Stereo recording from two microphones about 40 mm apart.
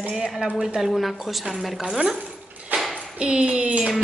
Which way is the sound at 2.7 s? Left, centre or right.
Right.